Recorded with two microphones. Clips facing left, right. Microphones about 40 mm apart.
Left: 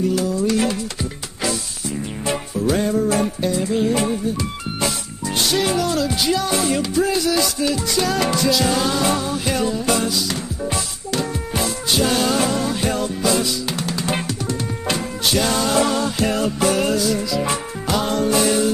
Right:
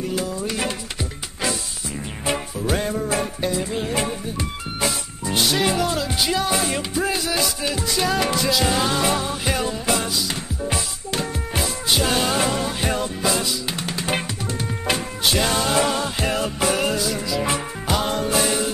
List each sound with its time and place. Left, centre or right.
0.3 s music: centre
2.7 s music: centre
5.3 s music: centre
11.5 s music: centre
13.7 s music: right; by 18.6 s centre